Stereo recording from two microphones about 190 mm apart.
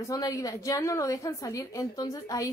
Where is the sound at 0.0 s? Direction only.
15° left (ahead or behind).